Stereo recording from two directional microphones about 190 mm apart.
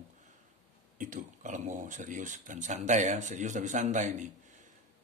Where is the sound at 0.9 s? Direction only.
45° right (ahead or behind).